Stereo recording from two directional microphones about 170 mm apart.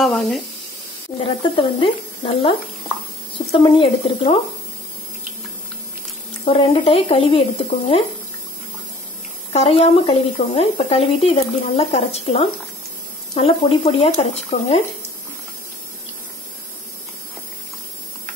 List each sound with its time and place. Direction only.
0.0 s speech: 5° left (ahead or behind)
1.6 s speech: 30° left (ahead or behind)
3.5 s speech: 30° left (ahead or behind)
6.4 s speech: 35° left (ahead or behind)
9.5 s speech: 35° left (ahead or behind)